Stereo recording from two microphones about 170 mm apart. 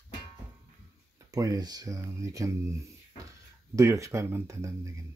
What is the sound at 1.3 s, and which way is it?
Speech, 20° right (ahead or behind).